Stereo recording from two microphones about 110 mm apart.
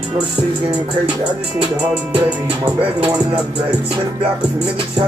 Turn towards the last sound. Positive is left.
turn(degrees=-10)  # may be behind; listen again after turning